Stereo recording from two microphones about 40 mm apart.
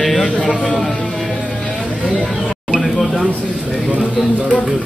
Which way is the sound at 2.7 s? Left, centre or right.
Centre.